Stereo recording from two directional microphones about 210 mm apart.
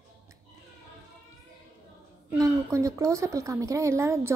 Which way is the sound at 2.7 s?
15° right (ahead or behind).